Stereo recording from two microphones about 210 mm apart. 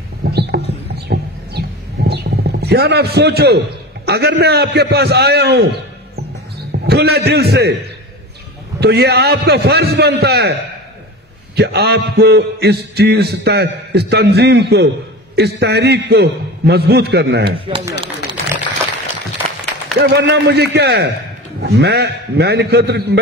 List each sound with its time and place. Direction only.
0.2 s a sound: 50° right (ahead or behind)
6.7 s a man's voice: 50° right (ahead or behind)
8.7 s a man's voice: 50° right (ahead or behind)
11.5 s a man's voice: 50° right (ahead or behind)
17.5 s speech: 25° right (ahead or behind)
20.0 s a man's voice: 55° right (ahead or behind)